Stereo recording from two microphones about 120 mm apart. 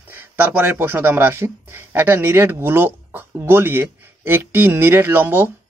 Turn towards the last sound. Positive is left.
turn(degrees=-15)  # may be behind; listen again after turning